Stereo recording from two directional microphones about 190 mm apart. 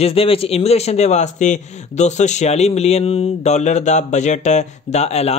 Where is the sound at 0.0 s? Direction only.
30° left (ahead or behind).